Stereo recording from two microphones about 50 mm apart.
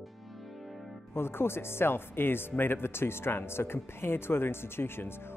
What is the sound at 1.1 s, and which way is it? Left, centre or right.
Speech, left.